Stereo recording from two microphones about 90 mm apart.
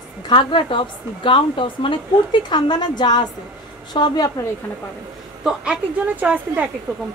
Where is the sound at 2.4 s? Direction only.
55° left (ahead or behind).